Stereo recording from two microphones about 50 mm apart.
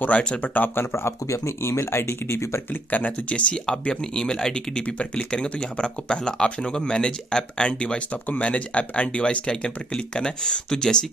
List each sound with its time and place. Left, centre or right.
0.7 s speech: left
2.7 s speech: left; by 11.1 s centre